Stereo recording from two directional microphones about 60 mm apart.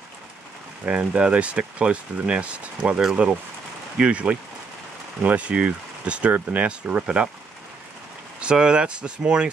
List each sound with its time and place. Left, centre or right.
0.8 s speech: right
4.0 s speech: right
8.4 s speech: centre